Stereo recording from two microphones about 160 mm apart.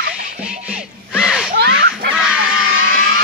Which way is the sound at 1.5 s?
80° right.